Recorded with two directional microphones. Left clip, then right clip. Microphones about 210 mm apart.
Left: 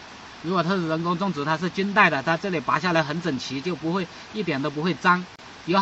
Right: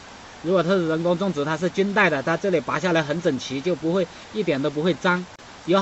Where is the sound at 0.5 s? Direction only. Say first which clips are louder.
Right 3 dB; 25° left (ahead or behind).